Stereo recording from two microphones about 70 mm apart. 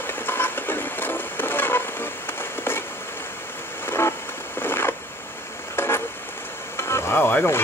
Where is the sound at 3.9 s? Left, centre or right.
Left.